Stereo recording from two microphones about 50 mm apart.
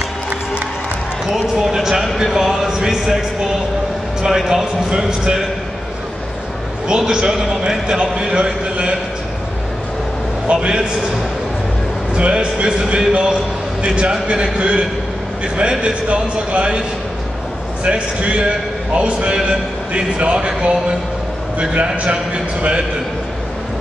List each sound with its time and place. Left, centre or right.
1.3 s speech: centre
4.8 s a man's voice: centre
6.9 s a man's voice: centre
10.5 s a man's voice: right
12.1 s a man's voice: right
17.8 s a man's voice: right